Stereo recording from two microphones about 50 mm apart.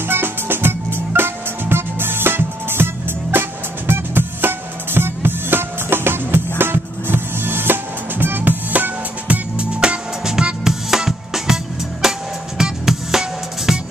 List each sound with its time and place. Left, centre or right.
0.1 s music: right; by 13.7 s centre